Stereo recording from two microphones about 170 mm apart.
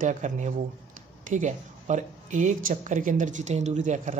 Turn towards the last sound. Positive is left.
turn(degrees=-45)  # may be behind; listen again after turning